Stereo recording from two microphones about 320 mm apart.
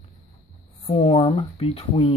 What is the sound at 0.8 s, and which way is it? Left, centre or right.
Speech, centre.